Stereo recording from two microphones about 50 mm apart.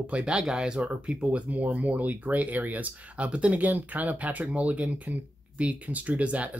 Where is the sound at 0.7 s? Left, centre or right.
Right.